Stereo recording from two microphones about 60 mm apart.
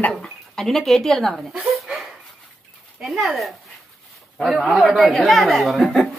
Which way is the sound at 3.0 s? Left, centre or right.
Centre.